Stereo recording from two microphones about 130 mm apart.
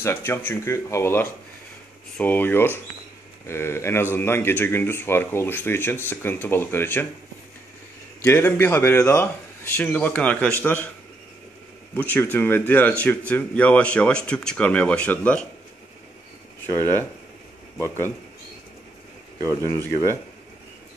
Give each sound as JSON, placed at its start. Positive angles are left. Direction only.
{"t": 0.0, "sound": "speech", "side_deg": 15}
{"t": 8.2, "sound": "speech", "side_deg": 15}
{"t": 11.9, "sound": "speech", "side_deg": 15}
{"t": 16.7, "sound": "speech", "side_deg": 15}